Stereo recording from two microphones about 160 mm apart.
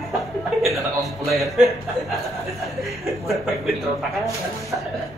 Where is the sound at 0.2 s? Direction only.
Centre (ahead or behind).